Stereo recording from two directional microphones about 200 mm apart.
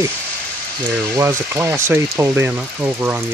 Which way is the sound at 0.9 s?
15° right (ahead or behind).